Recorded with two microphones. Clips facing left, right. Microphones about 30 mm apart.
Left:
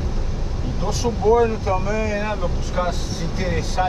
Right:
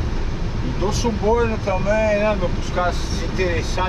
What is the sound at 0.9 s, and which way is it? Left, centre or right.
Speech, centre.